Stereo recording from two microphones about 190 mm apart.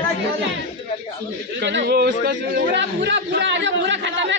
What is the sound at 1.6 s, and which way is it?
Speech, 65° right (ahead or behind).